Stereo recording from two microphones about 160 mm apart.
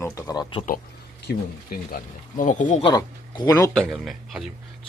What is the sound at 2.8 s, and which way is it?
Speech, 25° left (ahead or behind).